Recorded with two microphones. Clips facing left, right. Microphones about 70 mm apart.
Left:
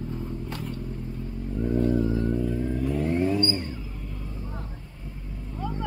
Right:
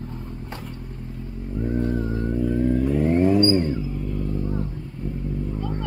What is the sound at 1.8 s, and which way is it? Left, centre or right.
Vehicle, right.